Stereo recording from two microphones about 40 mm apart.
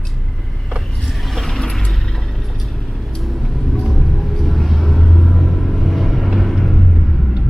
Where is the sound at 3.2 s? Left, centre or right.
Centre.